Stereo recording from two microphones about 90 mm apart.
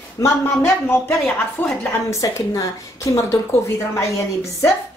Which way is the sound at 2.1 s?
35° left (ahead or behind).